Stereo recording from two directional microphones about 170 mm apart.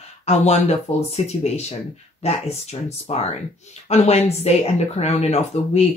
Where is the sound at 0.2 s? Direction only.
40° left (ahead or behind).